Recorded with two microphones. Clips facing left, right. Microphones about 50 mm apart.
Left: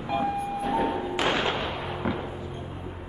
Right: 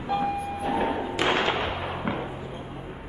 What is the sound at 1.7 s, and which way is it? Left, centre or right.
Fireworks, centre.